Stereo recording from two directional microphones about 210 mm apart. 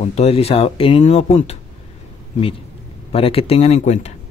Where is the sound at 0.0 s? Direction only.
30° left (ahead or behind).